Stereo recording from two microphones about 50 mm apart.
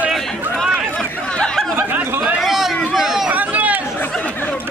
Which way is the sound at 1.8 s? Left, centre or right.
Right.